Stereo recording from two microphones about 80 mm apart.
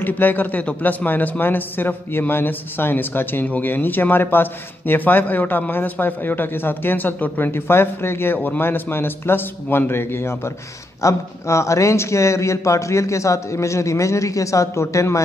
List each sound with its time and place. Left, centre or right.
0.0 s a man's voice: left